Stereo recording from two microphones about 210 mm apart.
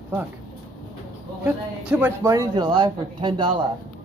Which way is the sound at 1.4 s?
5° right (ahead or behind).